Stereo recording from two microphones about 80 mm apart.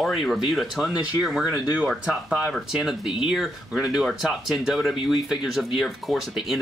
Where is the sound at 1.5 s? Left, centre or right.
Centre.